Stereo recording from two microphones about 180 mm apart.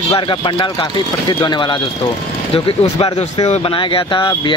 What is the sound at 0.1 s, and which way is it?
Speech, 30° left (ahead or behind).